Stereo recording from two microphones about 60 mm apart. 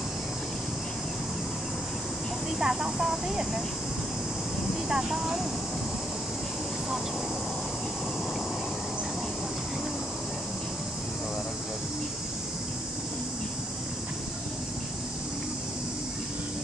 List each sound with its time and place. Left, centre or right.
2.6 s speech: centre
4.8 s speech: centre